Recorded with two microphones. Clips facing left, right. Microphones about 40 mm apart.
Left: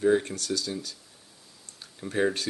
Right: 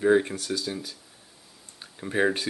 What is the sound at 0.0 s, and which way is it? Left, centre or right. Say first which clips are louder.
Speech: right 2 dB; centre.